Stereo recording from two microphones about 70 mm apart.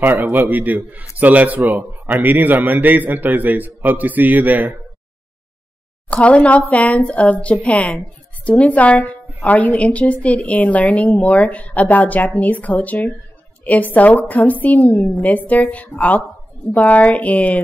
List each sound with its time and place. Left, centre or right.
0.0 s a man's voice: right
6.0 s a woman's voice: centre